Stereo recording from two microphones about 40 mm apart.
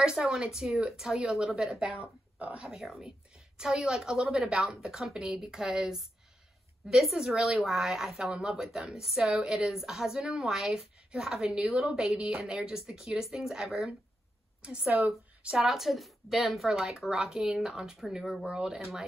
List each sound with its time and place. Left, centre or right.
0.0 s a woman's voice: centre
1.8 s a woman's voice: right
2.6 s a woman's voice: centre
14.6 s a woman's voice: right
15.5 s a woman's voice: centre